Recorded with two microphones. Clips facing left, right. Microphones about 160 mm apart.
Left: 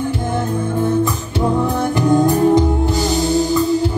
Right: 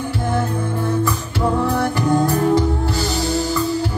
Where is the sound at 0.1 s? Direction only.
20° left (ahead or behind).